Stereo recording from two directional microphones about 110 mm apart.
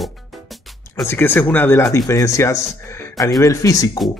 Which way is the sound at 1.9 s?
30° left (ahead or behind).